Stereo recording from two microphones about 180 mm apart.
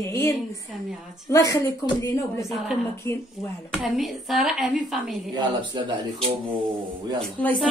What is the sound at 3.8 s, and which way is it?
A woman's voice, centre (ahead or behind).